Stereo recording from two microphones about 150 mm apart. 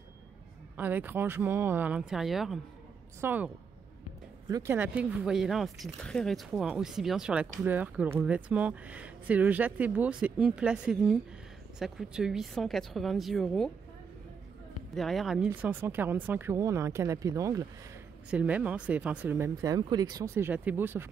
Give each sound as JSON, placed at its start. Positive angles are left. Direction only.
{"t": 0.7, "sound": "speech", "side_deg": -10}
{"t": 3.2, "sound": "speech", "side_deg": -10}
{"t": 4.5, "sound": "speech", "side_deg": -25}
{"t": 4.7, "sound": "speech", "side_deg": -10}
{"t": 14.9, "sound": "speech", "side_deg": 0}
{"t": 18.3, "sound": "speech", "side_deg": -10}
{"t": 20.4, "sound": "speech", "side_deg": -10}